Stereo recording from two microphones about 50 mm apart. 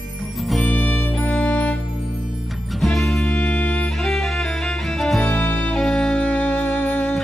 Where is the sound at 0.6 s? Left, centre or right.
Left.